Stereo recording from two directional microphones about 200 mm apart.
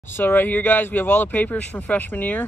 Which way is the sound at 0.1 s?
10° left (ahead or behind).